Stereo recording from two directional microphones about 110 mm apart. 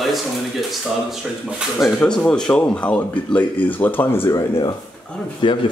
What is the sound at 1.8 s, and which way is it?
Speech, 10° left (ahead or behind).